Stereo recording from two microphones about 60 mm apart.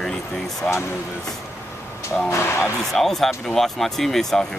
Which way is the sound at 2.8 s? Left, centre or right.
Centre.